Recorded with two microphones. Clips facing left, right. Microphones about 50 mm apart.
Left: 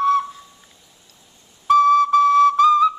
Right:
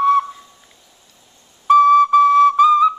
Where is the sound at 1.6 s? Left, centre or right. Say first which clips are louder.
Right 3 dB; centre.